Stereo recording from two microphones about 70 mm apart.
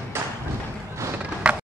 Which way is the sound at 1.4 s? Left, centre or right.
Centre.